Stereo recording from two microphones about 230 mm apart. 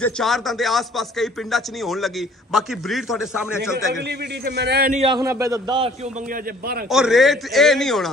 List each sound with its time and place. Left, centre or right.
0.0 s speech: centre
4.0 s a man's voice: right
4.9 s a man's voice: right
6.3 s a man's voice: right
6.9 s speech: centre